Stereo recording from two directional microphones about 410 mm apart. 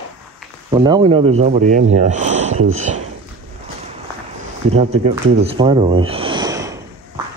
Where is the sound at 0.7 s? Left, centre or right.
Centre.